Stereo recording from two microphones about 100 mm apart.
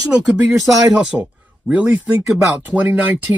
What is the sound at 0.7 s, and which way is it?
Speech, 5° right (ahead or behind).